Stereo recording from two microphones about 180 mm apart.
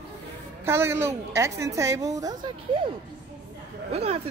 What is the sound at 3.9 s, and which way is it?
Speech, 35° right (ahead or behind).